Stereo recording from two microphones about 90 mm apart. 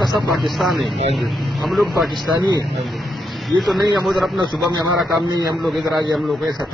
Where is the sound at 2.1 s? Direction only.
55° right (ahead or behind).